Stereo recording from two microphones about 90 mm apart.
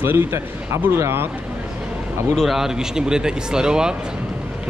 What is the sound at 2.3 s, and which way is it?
Speech, centre (ahead or behind).